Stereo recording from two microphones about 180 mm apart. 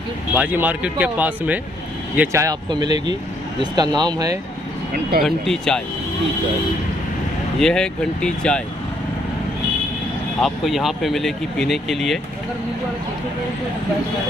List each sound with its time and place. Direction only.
0.3 s speech: 10° right (ahead or behind)
5.2 s speech: centre (ahead or behind)
7.6 s speech: 5° left (ahead or behind)
10.4 s speech: centre (ahead or behind)